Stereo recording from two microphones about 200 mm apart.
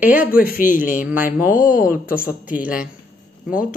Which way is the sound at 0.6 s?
40° left (ahead or behind).